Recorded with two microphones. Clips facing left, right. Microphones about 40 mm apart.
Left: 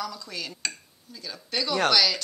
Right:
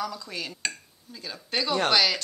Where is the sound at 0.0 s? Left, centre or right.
Centre.